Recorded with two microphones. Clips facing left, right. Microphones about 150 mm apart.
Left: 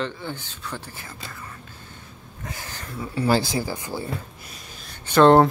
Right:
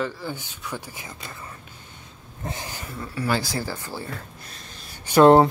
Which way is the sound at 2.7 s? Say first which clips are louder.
Even; 10° right (ahead or behind).